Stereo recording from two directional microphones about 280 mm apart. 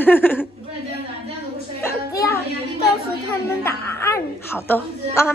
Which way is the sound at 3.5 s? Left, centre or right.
Centre.